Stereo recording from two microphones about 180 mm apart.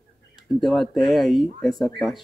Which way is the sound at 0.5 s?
Centre (ahead or behind).